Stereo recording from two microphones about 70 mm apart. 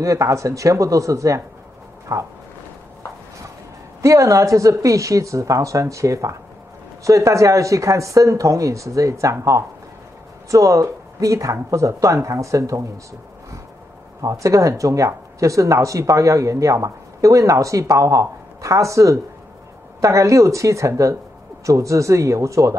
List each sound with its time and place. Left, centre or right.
0.0 s speech: right
4.0 s speech: right
14.2 s speech: right